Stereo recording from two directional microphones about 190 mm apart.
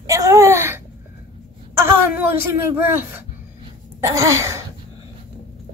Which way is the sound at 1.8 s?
10° right (ahead or behind).